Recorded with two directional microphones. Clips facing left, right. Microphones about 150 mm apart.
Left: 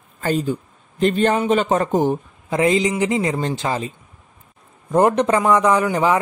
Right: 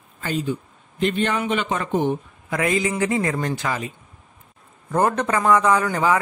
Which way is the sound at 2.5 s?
25° left (ahead or behind).